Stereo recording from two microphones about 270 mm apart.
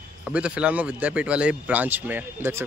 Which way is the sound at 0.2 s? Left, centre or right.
Centre.